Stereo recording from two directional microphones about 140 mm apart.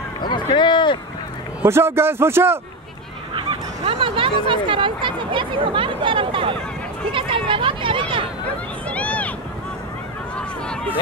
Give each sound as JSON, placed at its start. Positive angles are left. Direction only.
{"t": 0.2, "sound": "run", "side_deg": 35}
{"t": 1.6, "sound": "a man's voice", "side_deg": -15}
{"t": 3.8, "sound": "speech", "side_deg": -40}
{"t": 8.9, "sound": "vehicle", "side_deg": 10}